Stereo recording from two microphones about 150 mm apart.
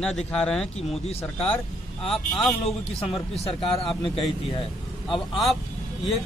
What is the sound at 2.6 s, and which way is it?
A man's voice, 40° left (ahead or behind).